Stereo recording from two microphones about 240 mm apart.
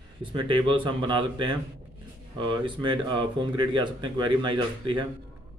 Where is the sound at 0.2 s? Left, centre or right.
Right.